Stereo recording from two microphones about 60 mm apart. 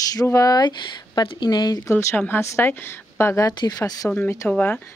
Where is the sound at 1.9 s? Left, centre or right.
Left.